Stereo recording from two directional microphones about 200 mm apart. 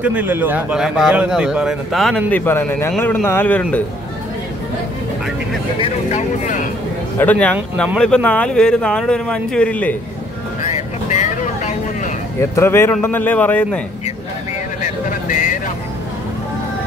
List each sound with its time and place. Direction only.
0.0 s a man's voice: 5° right (ahead or behind); by 3.8 s 10° left (ahead or behind)
5.8 s speech: 35° left (ahead or behind)
7.2 s a man's voice: 10° left (ahead or behind)
10.7 s vehicle: 35° left (ahead or behind)
12.4 s a man's voice: 15° left (ahead or behind)
14.8 s a sound: 40° left (ahead or behind)